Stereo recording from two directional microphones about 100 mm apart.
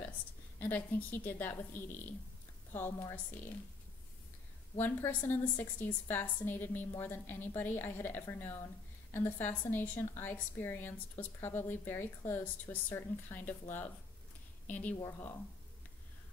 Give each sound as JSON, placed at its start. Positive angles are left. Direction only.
{"t": 0.6, "sound": "a woman's voice", "side_deg": 20}
{"t": 4.7, "sound": "a woman's voice", "side_deg": 25}
{"t": 15.0, "sound": "a woman's voice", "side_deg": 30}